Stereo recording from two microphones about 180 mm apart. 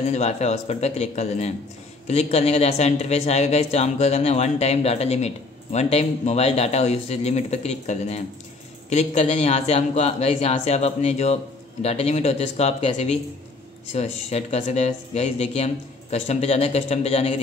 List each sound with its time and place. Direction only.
0.0 s speech: 40° left (ahead or behind)